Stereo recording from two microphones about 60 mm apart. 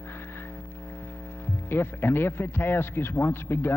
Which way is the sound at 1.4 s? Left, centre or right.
Left.